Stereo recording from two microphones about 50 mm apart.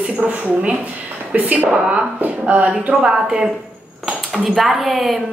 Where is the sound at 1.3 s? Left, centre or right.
Right.